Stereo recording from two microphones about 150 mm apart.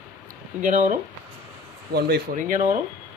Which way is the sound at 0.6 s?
60° right (ahead or behind).